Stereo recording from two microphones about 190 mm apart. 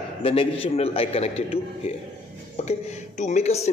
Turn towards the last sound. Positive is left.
turn(degrees=35)  # may be behind; listen again after turning